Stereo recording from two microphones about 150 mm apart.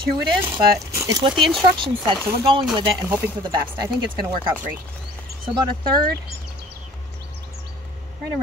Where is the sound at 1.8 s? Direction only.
35° right (ahead or behind).